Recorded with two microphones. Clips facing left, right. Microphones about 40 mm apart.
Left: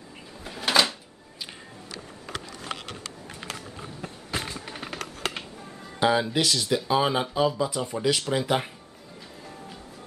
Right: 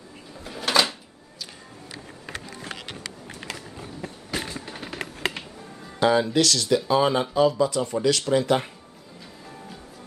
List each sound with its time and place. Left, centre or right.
0.4 s a sound: centre
2.2 s music: right
5.9 s speech: centre